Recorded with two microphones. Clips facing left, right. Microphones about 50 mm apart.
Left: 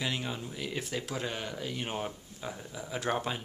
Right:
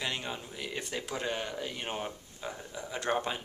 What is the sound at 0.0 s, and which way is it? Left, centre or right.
Speech, centre.